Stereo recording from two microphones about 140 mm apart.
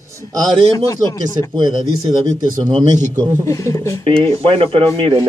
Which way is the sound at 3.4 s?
25° left (ahead or behind).